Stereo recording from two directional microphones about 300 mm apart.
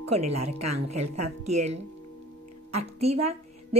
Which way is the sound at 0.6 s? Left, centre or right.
Right.